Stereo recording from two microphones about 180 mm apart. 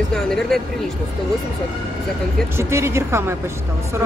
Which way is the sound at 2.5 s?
15° right (ahead or behind).